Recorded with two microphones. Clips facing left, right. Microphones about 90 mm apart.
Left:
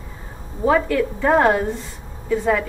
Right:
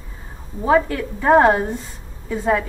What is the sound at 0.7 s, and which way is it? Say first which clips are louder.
A woman's voice: even; 20° right (ahead or behind).